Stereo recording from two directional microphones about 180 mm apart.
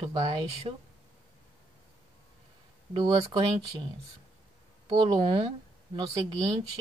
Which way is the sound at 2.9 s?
25° right (ahead or behind).